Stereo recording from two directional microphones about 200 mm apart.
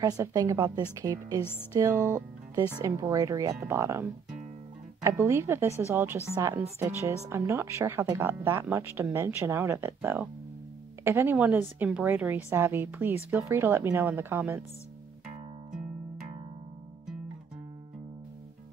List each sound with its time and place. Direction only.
0.0 s speech: 15° right (ahead or behind)
1.4 s music: 10° left (ahead or behind)
1.8 s speech: 15° right (ahead or behind)